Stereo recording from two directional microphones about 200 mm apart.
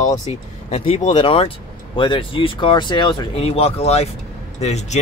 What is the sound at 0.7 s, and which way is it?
Speech, 30° left (ahead or behind).